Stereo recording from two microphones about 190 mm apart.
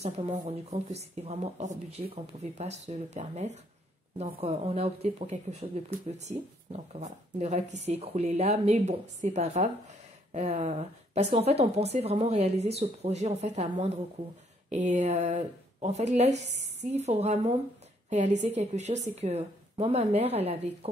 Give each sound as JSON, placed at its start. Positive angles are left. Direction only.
{"t": 0.0, "sound": "speech", "side_deg": -35}